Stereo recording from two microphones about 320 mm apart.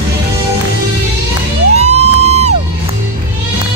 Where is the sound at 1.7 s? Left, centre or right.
Centre.